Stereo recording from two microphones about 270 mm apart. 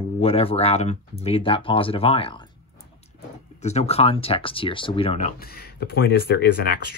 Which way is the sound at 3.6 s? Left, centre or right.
Left.